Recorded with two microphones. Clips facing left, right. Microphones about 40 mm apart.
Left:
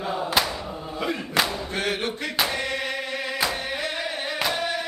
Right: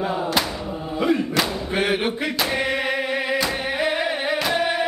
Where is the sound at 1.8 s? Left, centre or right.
Centre.